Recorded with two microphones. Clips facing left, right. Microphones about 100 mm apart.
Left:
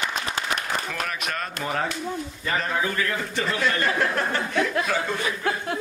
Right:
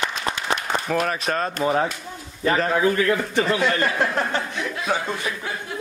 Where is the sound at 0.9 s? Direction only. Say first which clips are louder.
Right 7 dB; 35° right (ahead or behind).